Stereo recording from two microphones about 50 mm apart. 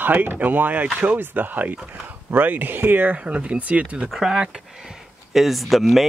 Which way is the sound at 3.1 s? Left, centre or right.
Right.